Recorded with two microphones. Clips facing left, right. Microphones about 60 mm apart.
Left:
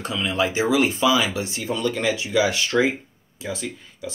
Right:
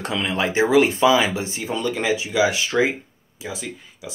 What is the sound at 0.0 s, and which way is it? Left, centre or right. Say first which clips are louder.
Speech: even; right.